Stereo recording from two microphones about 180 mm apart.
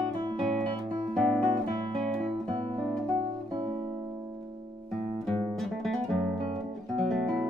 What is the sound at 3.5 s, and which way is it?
Music, 25° right (ahead or behind).